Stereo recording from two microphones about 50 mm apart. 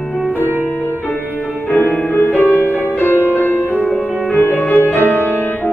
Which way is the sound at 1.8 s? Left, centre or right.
Left.